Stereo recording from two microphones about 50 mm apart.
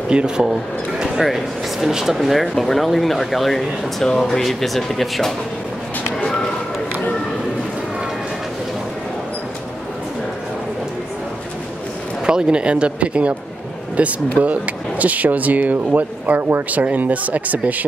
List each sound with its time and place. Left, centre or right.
0.1 s speech: centre
1.0 s speech: centre
12.3 s speech: centre